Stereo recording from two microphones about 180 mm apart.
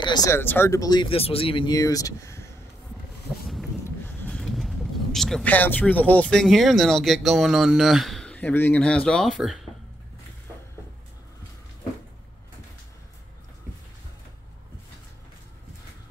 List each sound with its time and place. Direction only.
0.0 s speech: 20° left (ahead or behind)
3.3 s a sound: centre (ahead or behind)
3.8 s speech: 5° left (ahead or behind)